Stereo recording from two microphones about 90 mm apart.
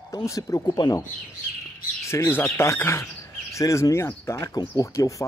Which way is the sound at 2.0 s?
30° left (ahead or behind).